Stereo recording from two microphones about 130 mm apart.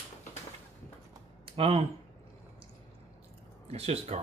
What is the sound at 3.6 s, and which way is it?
Speech, 50° right (ahead or behind).